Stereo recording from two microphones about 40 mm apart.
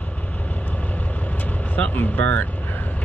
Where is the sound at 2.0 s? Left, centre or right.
Left.